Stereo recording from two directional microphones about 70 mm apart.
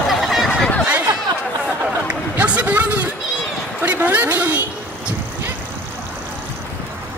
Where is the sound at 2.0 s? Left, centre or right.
Centre.